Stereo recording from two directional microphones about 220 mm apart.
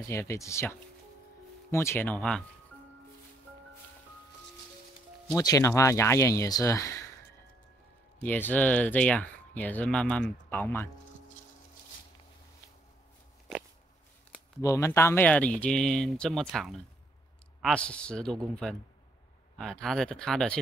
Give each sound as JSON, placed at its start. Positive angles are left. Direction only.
{"t": 0.0, "sound": "speech", "side_deg": 10}
{"t": 5.3, "sound": "speech", "side_deg": 15}
{"t": 8.2, "sound": "speech", "side_deg": 10}
{"t": 13.5, "sound": "a sound", "side_deg": 0}
{"t": 14.6, "sound": "speech", "side_deg": 15}